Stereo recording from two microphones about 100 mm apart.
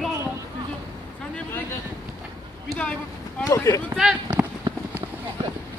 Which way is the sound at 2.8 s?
10° left (ahead or behind).